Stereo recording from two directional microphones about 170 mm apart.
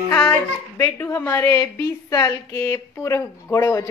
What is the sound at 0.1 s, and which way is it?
A child's voice, 10° left (ahead or behind).